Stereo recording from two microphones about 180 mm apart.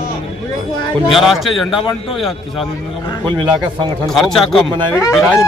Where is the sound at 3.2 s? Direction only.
25° right (ahead or behind).